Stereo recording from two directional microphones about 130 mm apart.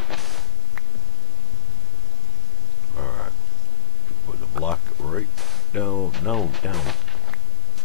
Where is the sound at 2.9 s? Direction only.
10° left (ahead or behind).